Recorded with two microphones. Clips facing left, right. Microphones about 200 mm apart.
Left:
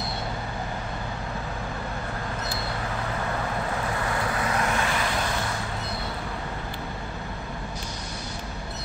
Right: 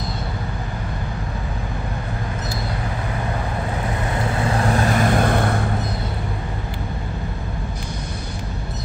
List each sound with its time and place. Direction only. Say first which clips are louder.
4.1 s vehicle: right 6 dB; 25° right (ahead or behind); by 5.7 s 55° right (ahead or behind)